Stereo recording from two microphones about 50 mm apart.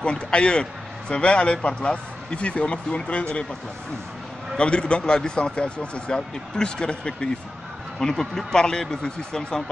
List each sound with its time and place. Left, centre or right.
0.0 s a man's voice: left
4.6 s a man's voice: centre
8.0 s speech: centre